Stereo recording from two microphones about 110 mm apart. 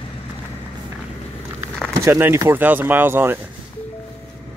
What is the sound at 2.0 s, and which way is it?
Speech, 20° right (ahead or behind).